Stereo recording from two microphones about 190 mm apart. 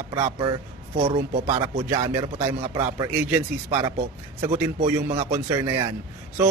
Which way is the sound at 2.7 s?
20° right (ahead or behind).